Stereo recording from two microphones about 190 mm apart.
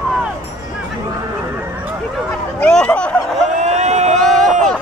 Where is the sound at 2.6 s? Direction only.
5° left (ahead or behind).